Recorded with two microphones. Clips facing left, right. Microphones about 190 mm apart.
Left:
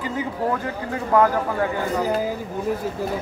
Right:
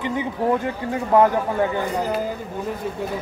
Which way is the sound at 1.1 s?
20° right (ahead or behind).